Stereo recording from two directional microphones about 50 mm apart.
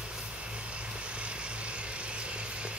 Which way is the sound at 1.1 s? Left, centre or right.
Right.